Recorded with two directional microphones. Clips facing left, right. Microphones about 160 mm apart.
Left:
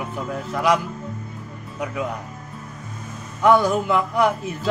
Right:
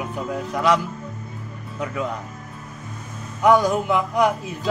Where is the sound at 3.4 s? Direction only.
15° right (ahead or behind).